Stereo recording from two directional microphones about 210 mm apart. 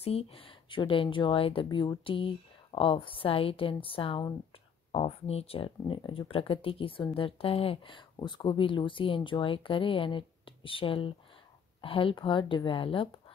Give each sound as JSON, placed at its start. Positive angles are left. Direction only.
{"t": 0.0, "sound": "speech", "side_deg": 30}